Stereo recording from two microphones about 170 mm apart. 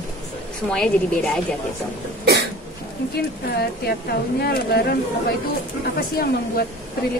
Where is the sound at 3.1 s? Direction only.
70° left (ahead or behind).